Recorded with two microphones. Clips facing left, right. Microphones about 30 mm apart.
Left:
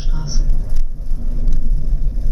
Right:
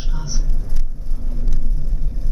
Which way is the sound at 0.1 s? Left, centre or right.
Centre.